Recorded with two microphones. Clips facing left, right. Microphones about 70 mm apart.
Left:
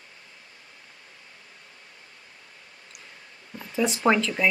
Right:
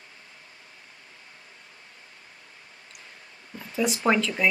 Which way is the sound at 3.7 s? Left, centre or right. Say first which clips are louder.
Left 1 dB; centre.